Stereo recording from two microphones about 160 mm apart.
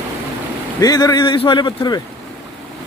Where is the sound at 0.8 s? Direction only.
25° left (ahead or behind).